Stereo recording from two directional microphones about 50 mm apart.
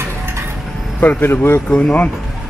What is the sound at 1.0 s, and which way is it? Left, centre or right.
Speech, left.